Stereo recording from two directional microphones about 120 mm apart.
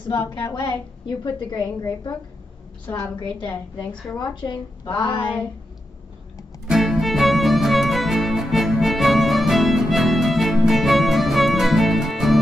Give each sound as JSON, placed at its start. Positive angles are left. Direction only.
{"t": 0.3, "sound": "a woman's voice", "side_deg": 35}
{"t": 3.3, "sound": "a woman's voice", "side_deg": 40}
{"t": 6.7, "sound": "music", "side_deg": 0}